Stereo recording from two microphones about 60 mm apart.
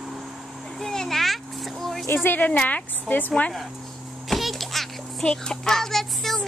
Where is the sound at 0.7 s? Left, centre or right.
Centre.